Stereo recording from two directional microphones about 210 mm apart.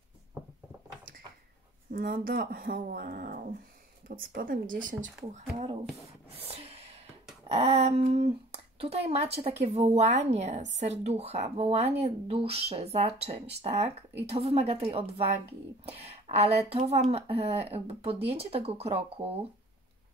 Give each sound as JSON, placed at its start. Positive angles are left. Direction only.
{"t": 1.9, "sound": "speech", "side_deg": -40}
{"t": 6.3, "sound": "gasp", "side_deg": -30}
{"t": 7.4, "sound": "speech", "side_deg": -30}